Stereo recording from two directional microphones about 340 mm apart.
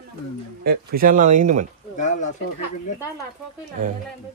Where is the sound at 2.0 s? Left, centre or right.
Left.